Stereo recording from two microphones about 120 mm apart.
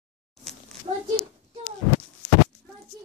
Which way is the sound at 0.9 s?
55° right (ahead or behind).